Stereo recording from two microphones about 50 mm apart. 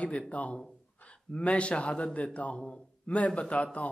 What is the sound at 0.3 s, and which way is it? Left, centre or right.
Speech, left.